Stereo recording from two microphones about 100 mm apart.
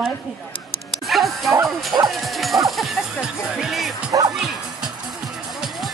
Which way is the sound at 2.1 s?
Centre (ahead or behind).